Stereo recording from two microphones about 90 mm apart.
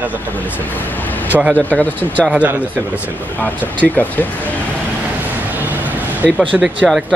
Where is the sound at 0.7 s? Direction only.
20° left (ahead or behind).